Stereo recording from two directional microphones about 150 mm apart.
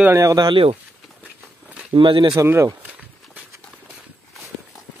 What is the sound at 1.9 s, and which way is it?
Speech, 35° right (ahead or behind).